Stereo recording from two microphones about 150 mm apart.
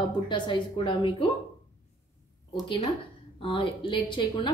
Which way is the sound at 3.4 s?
35° left (ahead or behind).